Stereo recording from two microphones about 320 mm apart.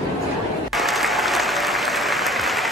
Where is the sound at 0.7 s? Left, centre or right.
Centre.